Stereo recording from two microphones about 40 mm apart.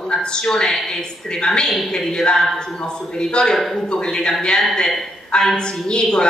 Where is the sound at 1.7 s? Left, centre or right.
Centre.